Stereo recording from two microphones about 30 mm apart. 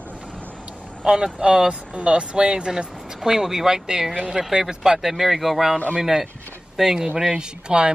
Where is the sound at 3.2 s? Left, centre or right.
Centre.